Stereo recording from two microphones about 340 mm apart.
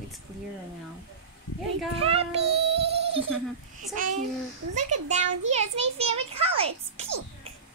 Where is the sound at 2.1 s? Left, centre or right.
Centre.